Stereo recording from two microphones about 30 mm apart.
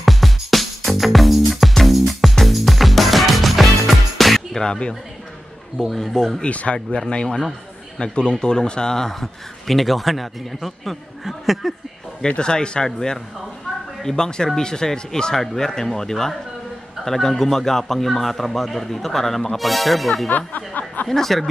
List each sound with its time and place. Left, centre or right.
0.0 s music: centre
5.8 s a man's voice: centre
6.4 s speech: left
7.1 s speech: left
9.1 s a man's voice: centre
12.4 s speech: left
15.3 s a man's voice: centre
20.2 s a sound: left
21.1 s a man's voice: centre